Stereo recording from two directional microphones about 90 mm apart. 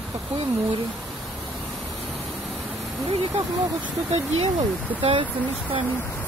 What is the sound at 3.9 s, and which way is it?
Speech, centre (ahead or behind).